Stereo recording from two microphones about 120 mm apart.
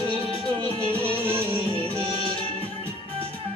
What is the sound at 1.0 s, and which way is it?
Music, 50° right (ahead or behind).